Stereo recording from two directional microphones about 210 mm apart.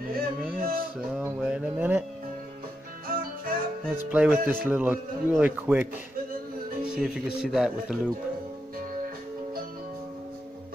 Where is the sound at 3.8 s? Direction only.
5° right (ahead or behind).